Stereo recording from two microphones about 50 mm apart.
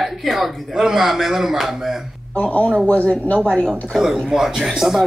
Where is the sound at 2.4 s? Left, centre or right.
Left.